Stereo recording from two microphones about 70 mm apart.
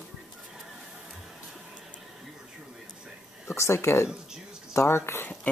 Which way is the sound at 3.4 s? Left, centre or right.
Left.